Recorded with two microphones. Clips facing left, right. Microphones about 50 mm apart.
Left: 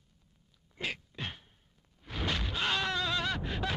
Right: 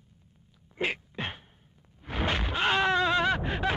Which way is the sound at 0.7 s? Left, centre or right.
Right.